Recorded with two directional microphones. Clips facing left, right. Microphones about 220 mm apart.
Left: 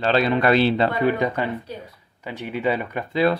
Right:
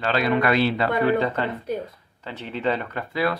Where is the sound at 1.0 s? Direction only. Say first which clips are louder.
Even; 15° left (ahead or behind).